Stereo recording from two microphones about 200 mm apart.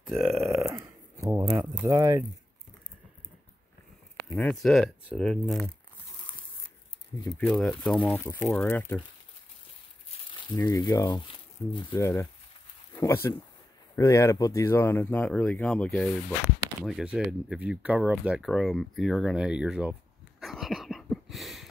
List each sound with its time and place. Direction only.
0.2 s speech: centre (ahead or behind)
0.5 s a sound: 15° right (ahead or behind)
4.2 s speech: 5° left (ahead or behind)
7.3 s speech: centre (ahead or behind)
10.0 s crumpling: 25° left (ahead or behind)
10.6 s speech: 20° left (ahead or behind); by 18.1 s 5° right (ahead or behind)
18.2 s a sound: 5° right (ahead or behind)